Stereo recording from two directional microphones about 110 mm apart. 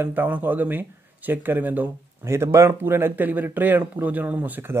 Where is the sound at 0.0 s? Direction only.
15° right (ahead or behind).